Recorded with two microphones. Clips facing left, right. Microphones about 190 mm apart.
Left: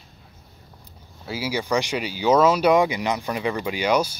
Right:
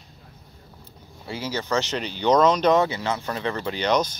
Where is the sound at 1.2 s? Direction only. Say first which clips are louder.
Left 2 dB; 10° left (ahead or behind).